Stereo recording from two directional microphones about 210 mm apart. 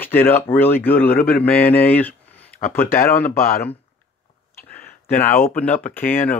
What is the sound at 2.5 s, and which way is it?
Speech, 45° left (ahead or behind).